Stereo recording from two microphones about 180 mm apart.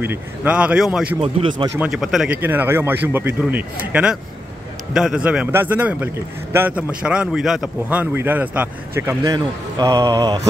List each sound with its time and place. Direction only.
0.0 s a man's voice: 10° right (ahead or behind)
1.2 s speech: 30° right (ahead or behind)
1.8 s a man's voice: centre (ahead or behind); by 10.4 s 20° right (ahead or behind)